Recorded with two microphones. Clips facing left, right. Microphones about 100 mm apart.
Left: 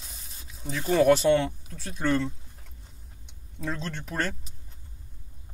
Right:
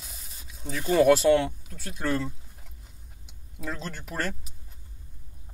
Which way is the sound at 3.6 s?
5° right (ahead or behind).